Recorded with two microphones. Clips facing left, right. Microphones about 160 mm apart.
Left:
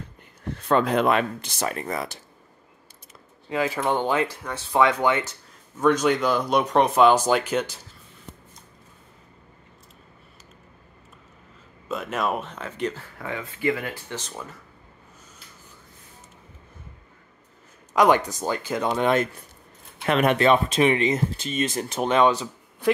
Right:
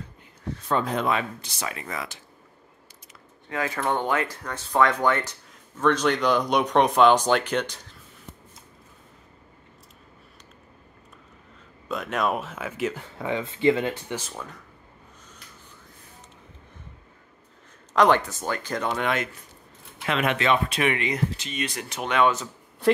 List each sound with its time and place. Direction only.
0.7 s speech: 75° left (ahead or behind); by 2.0 s 40° left (ahead or behind)
3.4 s speech: 20° left (ahead or behind)
3.7 s speech: 5° left (ahead or behind)
4.0 s speech: 30° left (ahead or behind)
4.3 s speech: 10° left (ahead or behind)
11.9 s speech: centre (ahead or behind)
13.0 s speech: 20° right (ahead or behind)
14.3 s speech: centre (ahead or behind)
17.9 s speech: 10° left (ahead or behind)
18.9 s speech: 30° left (ahead or behind)
20.1 s speech: 45° left (ahead or behind); by 21.5 s 30° left (ahead or behind)
21.5 s speech: 45° left (ahead or behind)